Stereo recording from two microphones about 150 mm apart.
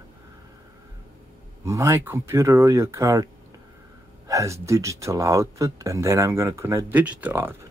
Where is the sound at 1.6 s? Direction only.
20° right (ahead or behind).